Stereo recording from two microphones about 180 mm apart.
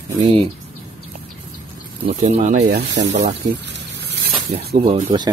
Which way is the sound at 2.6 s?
70° right (ahead or behind).